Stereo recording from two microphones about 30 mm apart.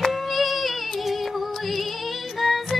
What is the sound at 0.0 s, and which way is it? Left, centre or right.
Music, centre.